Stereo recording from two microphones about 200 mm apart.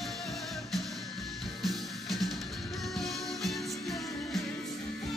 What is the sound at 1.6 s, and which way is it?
Music, centre (ahead or behind).